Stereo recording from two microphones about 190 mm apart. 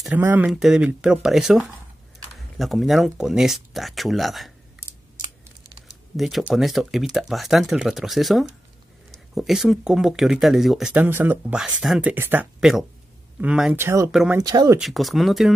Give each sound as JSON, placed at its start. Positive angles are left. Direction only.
{"t": 0.0, "sound": "speech", "side_deg": -10}
{"t": 5.9, "sound": "speech", "side_deg": 0}
{"t": 14.4, "sound": "speech", "side_deg": -20}
{"t": 14.8, "sound": "speech", "side_deg": 0}